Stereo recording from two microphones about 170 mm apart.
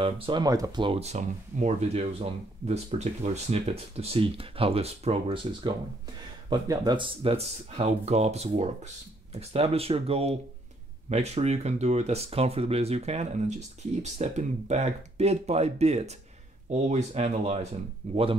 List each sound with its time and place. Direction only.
0.0 s speech: 25° right (ahead or behind)